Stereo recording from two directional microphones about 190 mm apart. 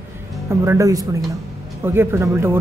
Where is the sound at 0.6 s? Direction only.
15° right (ahead or behind).